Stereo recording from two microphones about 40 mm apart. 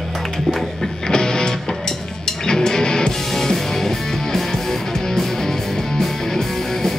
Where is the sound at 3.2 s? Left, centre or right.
Centre.